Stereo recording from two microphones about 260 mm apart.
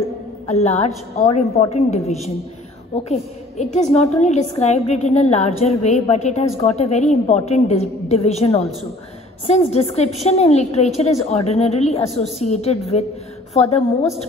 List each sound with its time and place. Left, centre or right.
0.5 s a woman's voice: left